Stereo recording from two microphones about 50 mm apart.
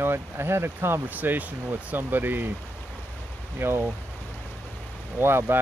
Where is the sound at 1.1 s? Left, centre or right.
Right.